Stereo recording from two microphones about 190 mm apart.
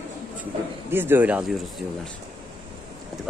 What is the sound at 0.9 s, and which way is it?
Speech, 10° right (ahead or behind).